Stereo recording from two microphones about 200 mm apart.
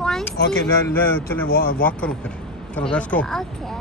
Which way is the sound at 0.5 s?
10° left (ahead or behind).